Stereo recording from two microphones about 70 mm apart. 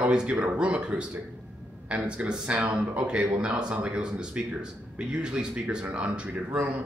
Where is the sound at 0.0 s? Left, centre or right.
Centre.